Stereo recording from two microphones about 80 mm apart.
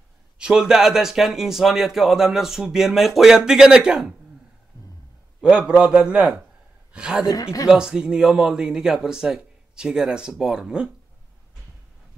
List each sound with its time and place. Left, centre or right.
0.4 s speech: centre
4.7 s a sound: left
5.4 s a woman's voice: centre